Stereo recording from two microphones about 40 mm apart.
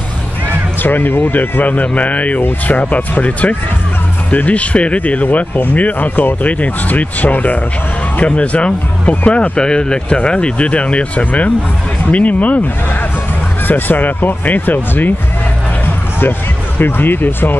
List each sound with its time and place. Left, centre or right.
0.5 s speech: left
6.6 s speech: left
8.3 s speech: left
9.6 s speech: left
13.7 s speech: left
16.2 s speech: left